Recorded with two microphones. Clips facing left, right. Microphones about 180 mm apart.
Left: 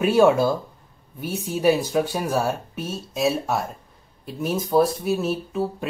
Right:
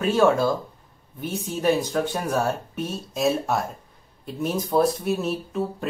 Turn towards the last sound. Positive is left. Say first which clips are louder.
# left 1 dB
turn(degrees=0)  # may be behind; listen again after turning